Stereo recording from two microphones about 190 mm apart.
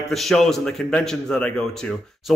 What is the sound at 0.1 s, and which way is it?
Speech, centre (ahead or behind).